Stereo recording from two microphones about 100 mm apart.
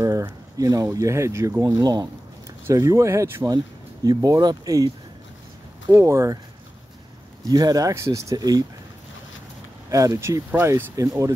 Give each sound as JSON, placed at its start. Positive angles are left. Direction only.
{"t": 0.0, "sound": "a sound", "side_deg": -30}
{"t": 0.9, "sound": "speech", "side_deg": -30}
{"t": 3.4, "sound": "speech", "side_deg": -40}
{"t": 7.4, "sound": "speech", "side_deg": -40}
{"t": 9.8, "sound": "speech", "side_deg": -35}
{"t": 10.5, "sound": "speech", "side_deg": -25}